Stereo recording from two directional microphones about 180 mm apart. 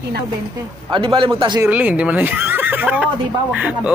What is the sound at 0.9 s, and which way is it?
Speech, 25° right (ahead or behind).